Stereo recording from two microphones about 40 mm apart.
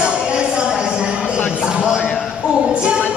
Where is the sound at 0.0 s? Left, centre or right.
Right.